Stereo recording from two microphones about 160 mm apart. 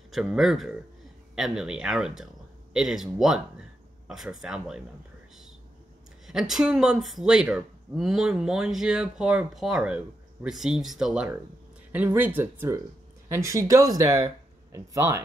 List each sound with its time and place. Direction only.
0.1 s speech: centre (ahead or behind)
6.2 s speech: centre (ahead or behind)